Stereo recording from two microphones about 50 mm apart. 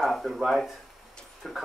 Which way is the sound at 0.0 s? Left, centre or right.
Centre.